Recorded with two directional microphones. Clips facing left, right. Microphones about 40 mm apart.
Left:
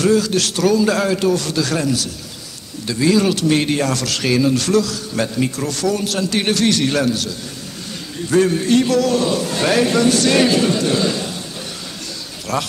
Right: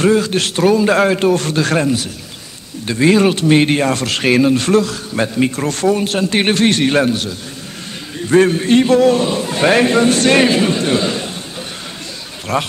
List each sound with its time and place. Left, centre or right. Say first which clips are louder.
0.0 s speech: right 2 dB; right
12.5 s speech: right 3 dB; right